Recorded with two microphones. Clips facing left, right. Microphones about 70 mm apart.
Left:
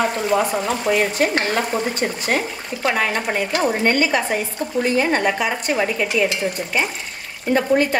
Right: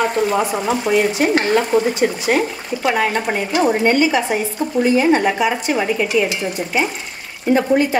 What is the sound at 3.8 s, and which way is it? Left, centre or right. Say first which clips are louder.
A woman's voice: right 3 dB; left.